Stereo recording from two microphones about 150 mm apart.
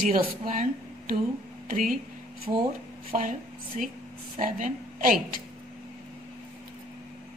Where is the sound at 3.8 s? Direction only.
55° right (ahead or behind).